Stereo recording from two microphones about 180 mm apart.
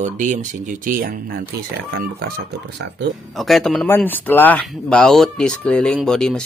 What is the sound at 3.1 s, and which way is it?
Speech, centre (ahead or behind).